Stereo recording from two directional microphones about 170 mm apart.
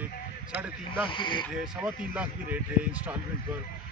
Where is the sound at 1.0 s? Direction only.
30° left (ahead or behind).